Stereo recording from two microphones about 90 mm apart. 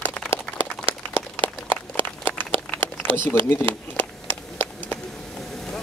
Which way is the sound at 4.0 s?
25° left (ahead or behind).